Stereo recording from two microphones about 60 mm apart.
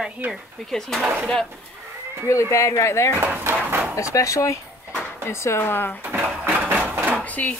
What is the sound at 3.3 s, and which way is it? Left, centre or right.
Speech, right.